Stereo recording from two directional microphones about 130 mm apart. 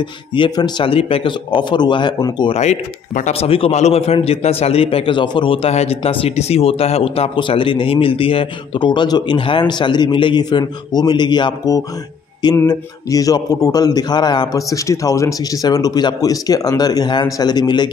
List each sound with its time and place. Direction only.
0.3 s a man's voice: 35° left (ahead or behind)
2.5 s a man's voice: 60° left (ahead or behind); by 17.8 s 35° left (ahead or behind)